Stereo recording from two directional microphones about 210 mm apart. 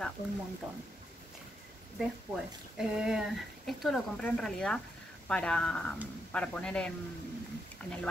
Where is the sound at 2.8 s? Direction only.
5° right (ahead or behind).